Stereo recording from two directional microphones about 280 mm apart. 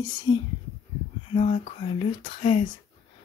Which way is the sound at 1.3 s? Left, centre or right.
Left.